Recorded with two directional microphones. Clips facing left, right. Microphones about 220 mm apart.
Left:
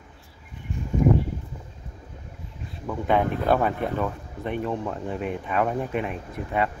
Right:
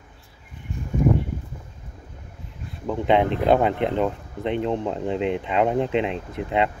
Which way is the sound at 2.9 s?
20° right (ahead or behind).